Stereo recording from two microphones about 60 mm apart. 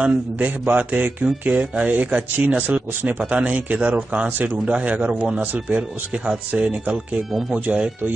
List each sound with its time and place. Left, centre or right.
0.0 s a man's voice: right